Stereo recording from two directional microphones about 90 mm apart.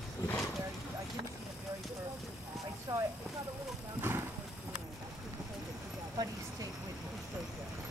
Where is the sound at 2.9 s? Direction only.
30° right (ahead or behind).